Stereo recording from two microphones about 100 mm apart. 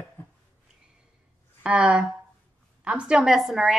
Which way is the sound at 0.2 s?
20° left (ahead or behind).